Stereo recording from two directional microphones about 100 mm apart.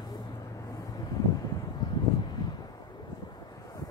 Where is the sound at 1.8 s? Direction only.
45° left (ahead or behind).